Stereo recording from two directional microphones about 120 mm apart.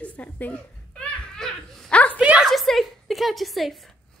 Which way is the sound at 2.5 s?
Centre (ahead or behind).